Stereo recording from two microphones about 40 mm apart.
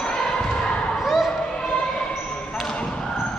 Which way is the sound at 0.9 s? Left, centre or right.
Centre.